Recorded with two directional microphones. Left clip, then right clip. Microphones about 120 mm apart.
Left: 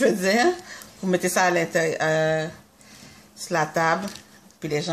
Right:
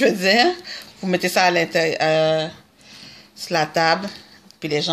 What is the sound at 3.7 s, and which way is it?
Speech, 15° right (ahead or behind).